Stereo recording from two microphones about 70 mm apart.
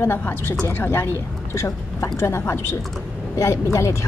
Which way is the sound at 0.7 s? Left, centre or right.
Left.